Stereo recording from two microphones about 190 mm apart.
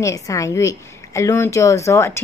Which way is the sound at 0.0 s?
15° left (ahead or behind).